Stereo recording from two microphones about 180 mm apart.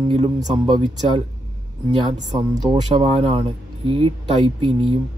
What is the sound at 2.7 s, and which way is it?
Speech, 30° right (ahead or behind).